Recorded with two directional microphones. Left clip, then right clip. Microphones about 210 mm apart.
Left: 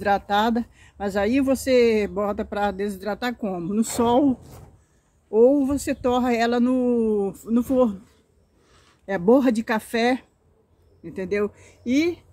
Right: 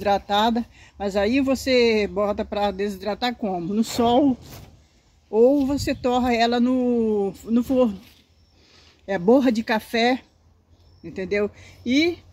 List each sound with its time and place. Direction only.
0.0 s speech: centre (ahead or behind)
5.3 s speech: centre (ahead or behind)
9.0 s speech: centre (ahead or behind)